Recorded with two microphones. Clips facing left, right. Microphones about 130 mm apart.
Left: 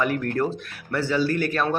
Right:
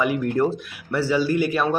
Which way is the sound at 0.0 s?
10° right (ahead or behind).